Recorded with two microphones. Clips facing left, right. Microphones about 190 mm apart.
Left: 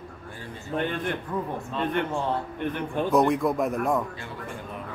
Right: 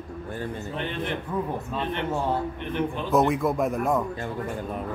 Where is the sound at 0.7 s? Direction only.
50° left (ahead or behind).